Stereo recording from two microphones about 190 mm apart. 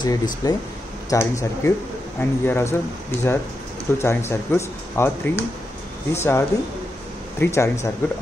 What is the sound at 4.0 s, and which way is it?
Speech, 15° left (ahead or behind).